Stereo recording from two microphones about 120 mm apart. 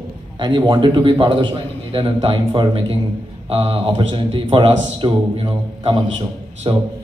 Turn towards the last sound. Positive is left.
turn(degrees=-45)  # may be behind; listen again after turning